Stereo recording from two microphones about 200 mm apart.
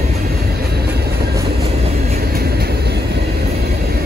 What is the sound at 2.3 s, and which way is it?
Vehicle, 50° right (ahead or behind).